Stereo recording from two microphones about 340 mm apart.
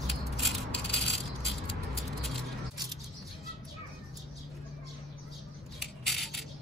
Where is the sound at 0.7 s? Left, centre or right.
Left.